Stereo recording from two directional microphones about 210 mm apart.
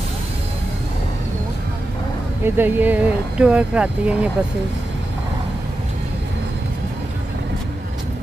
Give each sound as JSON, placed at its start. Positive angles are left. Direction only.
{"t": 2.4, "sound": "speech", "side_deg": -10}